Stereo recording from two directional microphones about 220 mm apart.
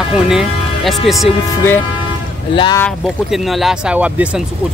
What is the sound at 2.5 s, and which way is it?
Speech, 20° left (ahead or behind).